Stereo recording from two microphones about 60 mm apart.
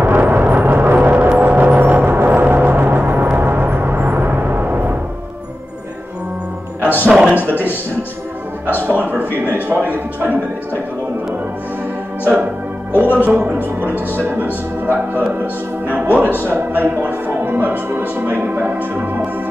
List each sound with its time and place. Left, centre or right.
0.0 s vehicle: right
0.9 s gong: right
1.4 s music: right
3.3 s gong: right
7.1 s a sound: centre
7.3 s a sound: right
8.6 s music: right
12.9 s music: right
18.1 s speech: right